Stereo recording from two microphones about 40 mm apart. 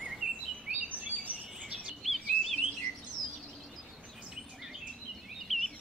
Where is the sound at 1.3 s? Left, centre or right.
Right.